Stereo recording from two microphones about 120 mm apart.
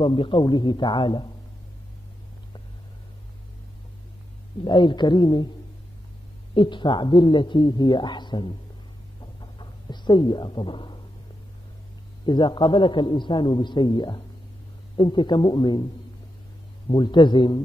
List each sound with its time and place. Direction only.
0.0 s a man's voice: 45° left (ahead or behind)
4.6 s a man's voice: 40° left (ahead or behind)
6.5 s a man's voice: 40° left (ahead or behind)
9.2 s a sound: 40° left (ahead or behind)
12.3 s a man's voice: 40° left (ahead or behind)
16.9 s a man's voice: 40° left (ahead or behind)